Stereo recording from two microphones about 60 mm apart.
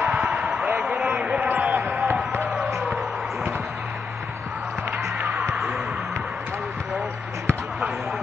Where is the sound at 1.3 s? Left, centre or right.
Centre.